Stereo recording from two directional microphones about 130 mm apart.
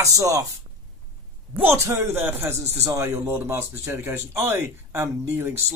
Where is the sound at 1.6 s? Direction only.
20° right (ahead or behind).